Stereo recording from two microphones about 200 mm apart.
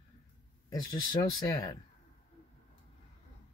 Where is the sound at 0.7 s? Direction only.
20° left (ahead or behind).